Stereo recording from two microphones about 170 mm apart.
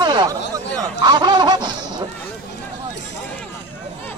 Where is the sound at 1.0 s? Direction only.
25° right (ahead or behind).